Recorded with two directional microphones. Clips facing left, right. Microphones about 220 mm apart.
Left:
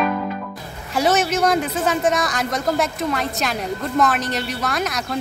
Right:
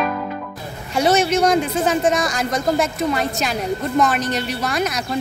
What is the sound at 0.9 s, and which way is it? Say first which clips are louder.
A woman's voice: right 2 dB; centre (ahead or behind).